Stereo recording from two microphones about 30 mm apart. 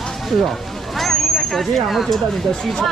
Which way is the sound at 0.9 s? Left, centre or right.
Centre.